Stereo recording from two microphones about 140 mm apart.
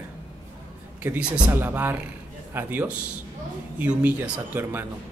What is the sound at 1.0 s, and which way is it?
Speech, 10° right (ahead or behind).